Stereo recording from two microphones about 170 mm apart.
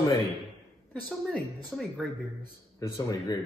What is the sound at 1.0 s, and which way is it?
Speech, centre (ahead or behind).